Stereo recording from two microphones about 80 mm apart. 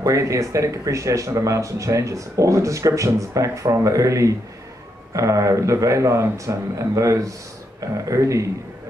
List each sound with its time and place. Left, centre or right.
0.0 s speech: right